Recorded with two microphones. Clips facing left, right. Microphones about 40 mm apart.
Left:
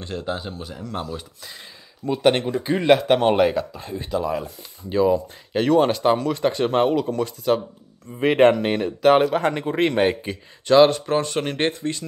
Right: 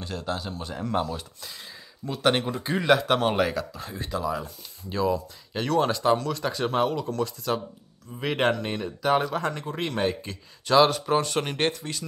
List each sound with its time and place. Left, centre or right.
0.0 s speech: centre
0.8 s speech: centre
2.0 s speech: centre
2.3 s speech: centre
2.8 s speech: centre
4.2 s speech: centre
8.2 s speech: left
10.7 s speech: centre